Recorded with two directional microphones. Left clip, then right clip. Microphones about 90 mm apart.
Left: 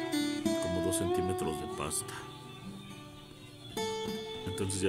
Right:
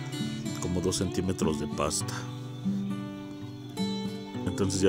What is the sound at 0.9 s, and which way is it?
Speech, 70° right (ahead or behind).